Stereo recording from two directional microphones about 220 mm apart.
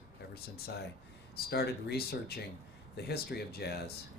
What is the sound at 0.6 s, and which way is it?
Speech, 45° left (ahead or behind).